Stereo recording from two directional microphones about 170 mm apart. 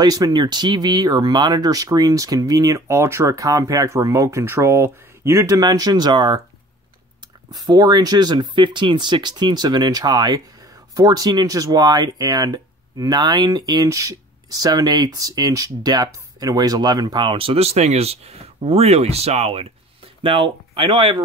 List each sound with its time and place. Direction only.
0.0 s speech: 20° right (ahead or behind)
7.6 s speech: 25° right (ahead or behind)